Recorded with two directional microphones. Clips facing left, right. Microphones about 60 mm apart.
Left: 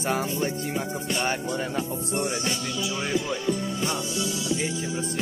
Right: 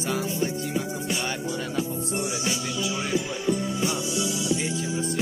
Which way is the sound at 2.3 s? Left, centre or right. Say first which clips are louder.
Even; centre.